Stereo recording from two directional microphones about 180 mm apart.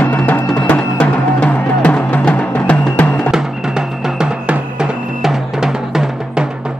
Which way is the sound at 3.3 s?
5° right (ahead or behind).